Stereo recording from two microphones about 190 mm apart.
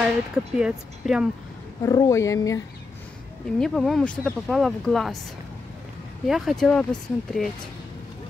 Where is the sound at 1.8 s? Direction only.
15° left (ahead or behind).